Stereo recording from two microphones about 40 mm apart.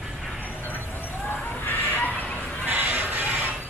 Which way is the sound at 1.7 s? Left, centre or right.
Left.